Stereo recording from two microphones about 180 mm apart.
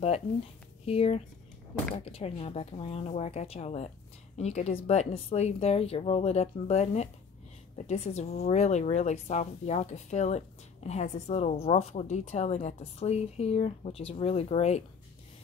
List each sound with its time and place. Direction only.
0.8 s a woman's voice: 35° left (ahead or behind)